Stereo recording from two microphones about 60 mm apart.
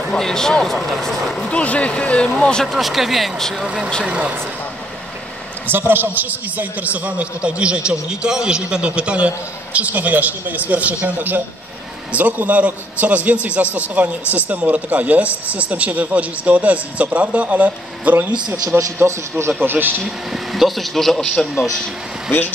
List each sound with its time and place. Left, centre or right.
0.0 s speech: centre
1.5 s speech: left
2.7 s speech: centre
3.6 s a man's voice: centre
5.7 s a man's voice: right
19.0 s a man's voice: right
20.0 s speech: centre